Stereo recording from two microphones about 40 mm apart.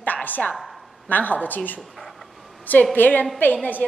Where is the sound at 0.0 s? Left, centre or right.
Left.